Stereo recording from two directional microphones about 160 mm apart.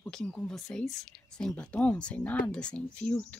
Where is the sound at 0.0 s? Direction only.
5° left (ahead or behind).